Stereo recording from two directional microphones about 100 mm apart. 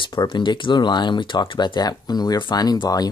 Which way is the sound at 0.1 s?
45° left (ahead or behind).